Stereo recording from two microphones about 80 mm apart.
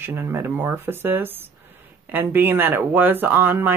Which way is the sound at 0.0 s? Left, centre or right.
Right.